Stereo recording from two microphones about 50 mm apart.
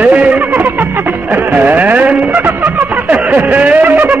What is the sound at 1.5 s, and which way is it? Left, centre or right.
Music, right.